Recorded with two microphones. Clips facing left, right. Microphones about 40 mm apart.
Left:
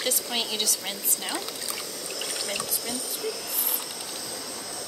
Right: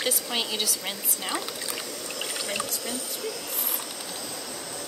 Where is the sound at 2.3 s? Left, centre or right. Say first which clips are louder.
Right 2 dB; right.